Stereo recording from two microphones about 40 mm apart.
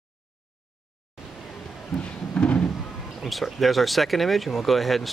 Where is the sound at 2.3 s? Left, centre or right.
Left.